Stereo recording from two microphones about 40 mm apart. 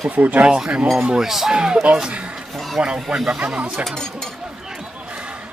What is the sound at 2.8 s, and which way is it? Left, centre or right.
Speech, right.